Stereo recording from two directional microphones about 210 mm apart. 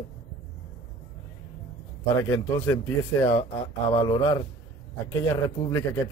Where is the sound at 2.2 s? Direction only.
15° left (ahead or behind).